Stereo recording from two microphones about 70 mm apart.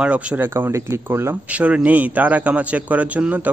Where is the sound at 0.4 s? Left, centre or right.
Right.